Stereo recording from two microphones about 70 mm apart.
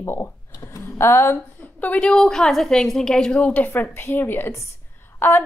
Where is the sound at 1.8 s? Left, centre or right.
Centre.